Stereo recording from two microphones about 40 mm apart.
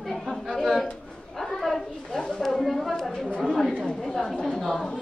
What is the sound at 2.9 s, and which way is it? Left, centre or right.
Chatter, centre.